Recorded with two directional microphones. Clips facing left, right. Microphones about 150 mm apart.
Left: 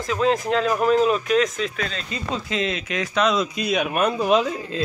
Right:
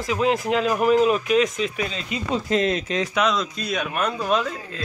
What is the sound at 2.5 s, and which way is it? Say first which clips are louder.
Speech: right 5 dB; 45° right (ahead or behind).